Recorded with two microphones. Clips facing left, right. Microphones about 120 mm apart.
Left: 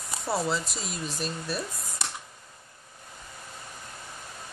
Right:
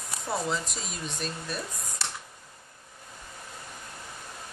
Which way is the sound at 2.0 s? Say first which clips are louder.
Left 1 dB; 15° left (ahead or behind).